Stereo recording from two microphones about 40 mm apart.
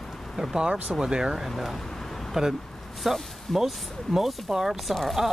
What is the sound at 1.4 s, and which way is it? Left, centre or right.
Speech, centre.